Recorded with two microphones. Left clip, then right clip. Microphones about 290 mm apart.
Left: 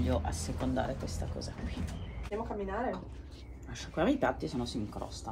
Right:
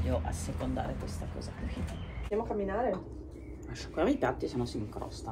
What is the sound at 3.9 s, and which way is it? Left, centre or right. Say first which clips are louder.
Speech: even; left.